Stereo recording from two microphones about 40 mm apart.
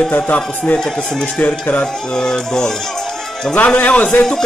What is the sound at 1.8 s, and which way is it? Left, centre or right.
Speech, centre.